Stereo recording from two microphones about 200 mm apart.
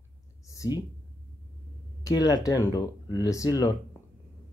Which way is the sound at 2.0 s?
20° left (ahead or behind).